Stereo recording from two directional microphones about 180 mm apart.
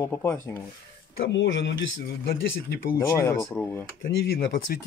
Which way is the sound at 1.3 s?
80° left.